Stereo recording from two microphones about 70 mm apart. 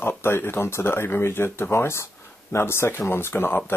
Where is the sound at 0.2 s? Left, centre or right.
Left.